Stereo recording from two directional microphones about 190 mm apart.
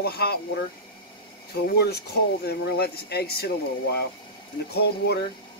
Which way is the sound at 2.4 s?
55° left (ahead or behind).